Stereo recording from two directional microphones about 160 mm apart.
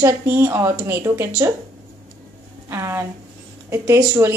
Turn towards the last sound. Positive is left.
turn(degrees=-15)  # may be behind; listen again after turning